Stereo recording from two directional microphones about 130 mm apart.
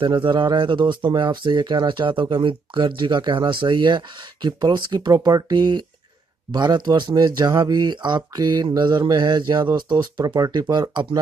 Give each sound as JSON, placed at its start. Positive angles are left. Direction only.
{"t": 0.0, "sound": "speech", "side_deg": -40}